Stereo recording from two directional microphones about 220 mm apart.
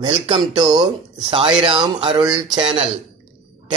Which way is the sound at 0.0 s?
25° right (ahead or behind).